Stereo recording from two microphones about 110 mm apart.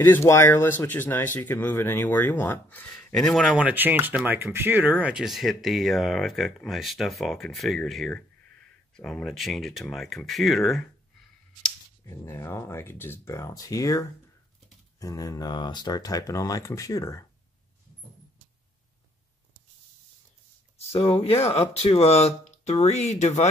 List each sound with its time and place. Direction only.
0.0 s speech: 20° left (ahead or behind); by 3.5 s 5° left (ahead or behind)
3.5 s speech: 15° right (ahead or behind); by 10.9 s centre (ahead or behind)
12.3 s speech: 25° left (ahead or behind)
20.7 s speech: 65° left (ahead or behind); by 23.5 s 90° left